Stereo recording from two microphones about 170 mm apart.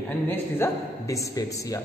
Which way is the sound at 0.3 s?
15° left (ahead or behind).